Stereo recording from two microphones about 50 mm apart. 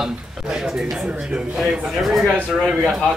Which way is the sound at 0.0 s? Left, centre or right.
Centre.